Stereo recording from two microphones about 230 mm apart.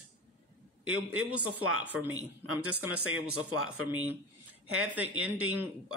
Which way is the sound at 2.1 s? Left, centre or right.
Right.